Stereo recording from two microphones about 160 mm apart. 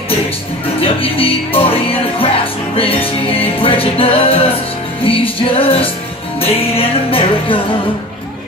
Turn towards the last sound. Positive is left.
turn(degrees=35)  # may be behind; listen again after turning